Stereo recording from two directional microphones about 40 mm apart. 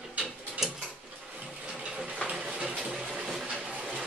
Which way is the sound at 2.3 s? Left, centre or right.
Right.